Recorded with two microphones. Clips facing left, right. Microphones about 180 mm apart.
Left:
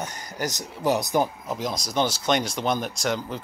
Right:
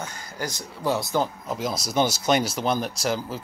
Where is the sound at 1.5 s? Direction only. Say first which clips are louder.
Right 1 dB; centre (ahead or behind).